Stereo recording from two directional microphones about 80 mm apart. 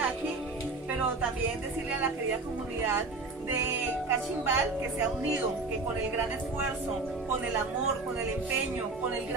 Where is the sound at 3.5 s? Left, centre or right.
Right.